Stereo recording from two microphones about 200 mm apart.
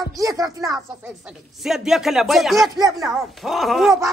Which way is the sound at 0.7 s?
5° right (ahead or behind).